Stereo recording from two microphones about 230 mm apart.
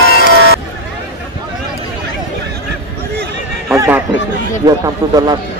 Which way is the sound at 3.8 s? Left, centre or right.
Centre.